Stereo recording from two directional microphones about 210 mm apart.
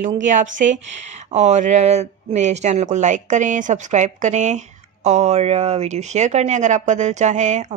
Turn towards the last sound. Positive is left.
turn(degrees=-35)  # may be behind; listen again after turning